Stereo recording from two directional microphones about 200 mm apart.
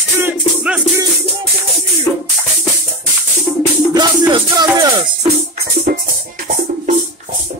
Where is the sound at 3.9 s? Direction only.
20° right (ahead or behind).